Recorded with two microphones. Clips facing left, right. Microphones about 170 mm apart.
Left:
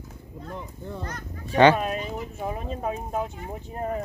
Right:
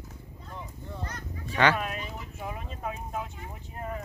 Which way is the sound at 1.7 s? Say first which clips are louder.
Left 6 dB; 35° left (ahead or behind).